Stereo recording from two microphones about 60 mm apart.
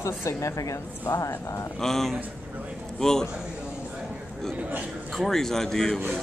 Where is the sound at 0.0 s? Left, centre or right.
Left.